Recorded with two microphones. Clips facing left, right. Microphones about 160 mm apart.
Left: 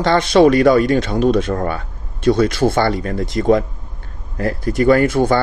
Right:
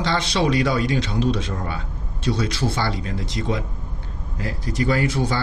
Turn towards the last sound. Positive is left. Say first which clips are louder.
# left 9 dB
turn(degrees=55)  # may be behind; listen again after turning